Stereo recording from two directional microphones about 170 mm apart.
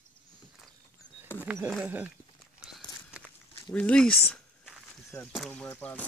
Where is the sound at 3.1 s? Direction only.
5° right (ahead or behind).